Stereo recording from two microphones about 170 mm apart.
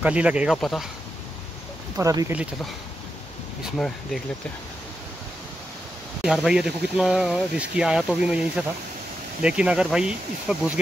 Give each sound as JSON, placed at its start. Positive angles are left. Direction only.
{"t": 0.0, "sound": "speech", "side_deg": -5}
{"t": 2.0, "sound": "speech", "side_deg": -20}
{"t": 3.6, "sound": "speech", "side_deg": 0}
{"t": 6.2, "sound": "speech", "side_deg": -5}